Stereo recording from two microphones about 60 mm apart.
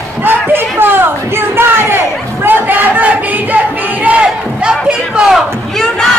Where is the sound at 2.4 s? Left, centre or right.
Right.